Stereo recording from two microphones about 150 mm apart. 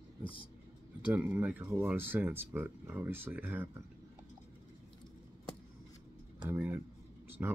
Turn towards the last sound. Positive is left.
turn(degrees=-10)  # may be behind; listen again after turning